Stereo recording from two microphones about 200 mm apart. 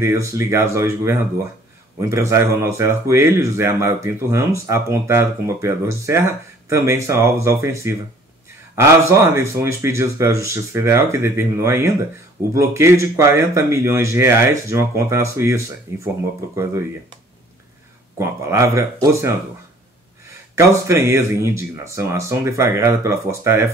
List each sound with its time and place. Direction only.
0.0 s speech: 15° right (ahead or behind)
18.2 s speech: 15° right (ahead or behind)
20.5 s speech: 15° right (ahead or behind)